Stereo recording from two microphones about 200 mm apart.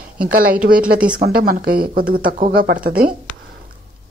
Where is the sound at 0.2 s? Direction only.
45° right (ahead or behind).